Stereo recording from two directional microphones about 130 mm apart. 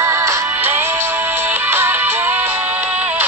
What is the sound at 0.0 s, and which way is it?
Music, 20° right (ahead or behind).